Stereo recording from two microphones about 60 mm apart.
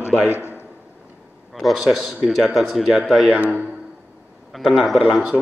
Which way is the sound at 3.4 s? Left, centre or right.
Right.